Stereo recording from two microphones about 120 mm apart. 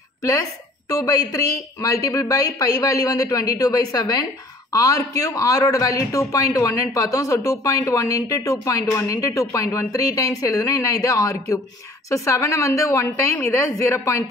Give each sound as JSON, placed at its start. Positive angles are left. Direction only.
{"t": 0.2, "sound": "speech", "side_deg": 30}